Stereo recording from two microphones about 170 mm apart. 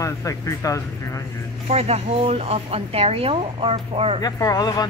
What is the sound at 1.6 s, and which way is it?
Speech, 40° right (ahead or behind).